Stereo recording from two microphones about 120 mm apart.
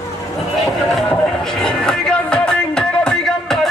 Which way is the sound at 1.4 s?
5° left (ahead or behind).